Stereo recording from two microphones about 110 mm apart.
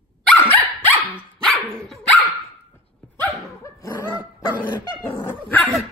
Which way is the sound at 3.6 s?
25° left (ahead or behind).